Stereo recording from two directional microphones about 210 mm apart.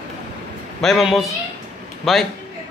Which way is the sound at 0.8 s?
Centre (ahead or behind).